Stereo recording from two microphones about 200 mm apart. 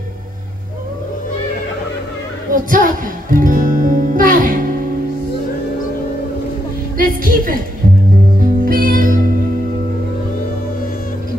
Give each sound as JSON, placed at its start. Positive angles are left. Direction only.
{"t": 2.5, "sound": "music", "side_deg": -45}
{"t": 7.0, "sound": "a sound", "side_deg": -45}
{"t": 8.4, "sound": "music", "side_deg": -45}